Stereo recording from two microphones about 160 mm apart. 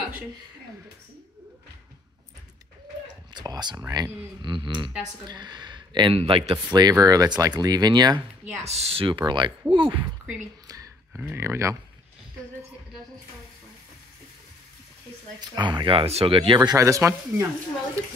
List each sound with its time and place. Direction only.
3.3 s speech: 25° right (ahead or behind)
8.6 s speech: 40° right (ahead or behind)
9.9 s speech: 10° right (ahead or behind)
15.4 s speech: 25° right (ahead or behind)